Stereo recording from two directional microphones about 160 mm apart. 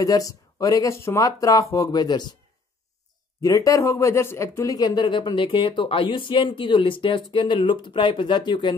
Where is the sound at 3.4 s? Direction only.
20° left (ahead or behind).